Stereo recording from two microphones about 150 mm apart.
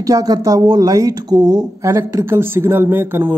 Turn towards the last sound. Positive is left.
turn(degrees=-15)  # may be behind; listen again after turning